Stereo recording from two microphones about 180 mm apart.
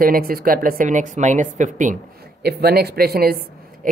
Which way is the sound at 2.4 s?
60° right (ahead or behind).